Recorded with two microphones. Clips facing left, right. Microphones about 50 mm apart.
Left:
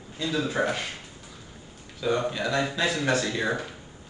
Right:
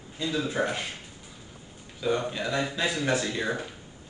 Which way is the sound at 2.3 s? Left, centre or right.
Left.